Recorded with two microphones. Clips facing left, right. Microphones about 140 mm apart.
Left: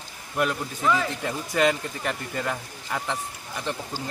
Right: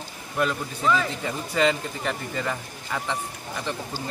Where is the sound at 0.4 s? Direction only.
15° left (ahead or behind).